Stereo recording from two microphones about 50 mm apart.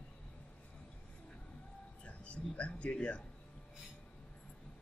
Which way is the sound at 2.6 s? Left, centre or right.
Left.